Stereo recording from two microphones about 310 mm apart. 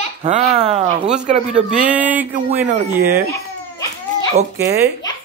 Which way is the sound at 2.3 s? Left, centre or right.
Right.